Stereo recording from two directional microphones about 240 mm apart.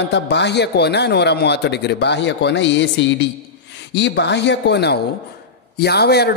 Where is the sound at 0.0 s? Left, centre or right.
Left.